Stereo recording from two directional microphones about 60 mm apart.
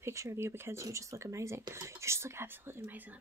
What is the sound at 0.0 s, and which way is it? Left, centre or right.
Speech, right.